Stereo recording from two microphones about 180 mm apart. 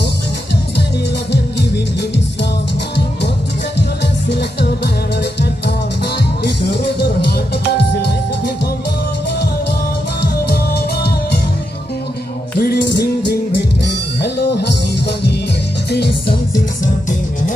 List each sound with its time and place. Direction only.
1.3 s music: 70° left (ahead or behind)
4.3 s music: 70° left (ahead or behind)
6.4 s music: 70° left (ahead or behind)
10.4 s music: 60° left (ahead or behind)
12.5 s music: 65° left (ahead or behind)
14.2 s music: 65° left (ahead or behind)